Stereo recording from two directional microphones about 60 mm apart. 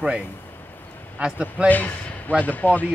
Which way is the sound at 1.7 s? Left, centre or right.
Left.